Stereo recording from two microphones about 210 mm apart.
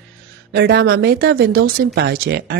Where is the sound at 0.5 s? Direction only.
50° right (ahead or behind).